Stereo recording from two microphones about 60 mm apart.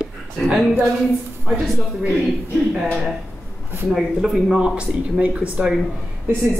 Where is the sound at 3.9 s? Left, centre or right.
Centre.